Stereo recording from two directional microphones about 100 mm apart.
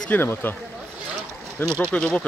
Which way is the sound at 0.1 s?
20° left (ahead or behind).